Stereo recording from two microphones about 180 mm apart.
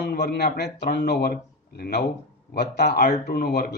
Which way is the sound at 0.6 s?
65° left (ahead or behind).